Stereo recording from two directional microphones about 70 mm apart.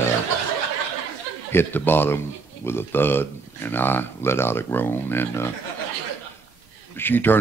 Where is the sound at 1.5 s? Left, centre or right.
Left.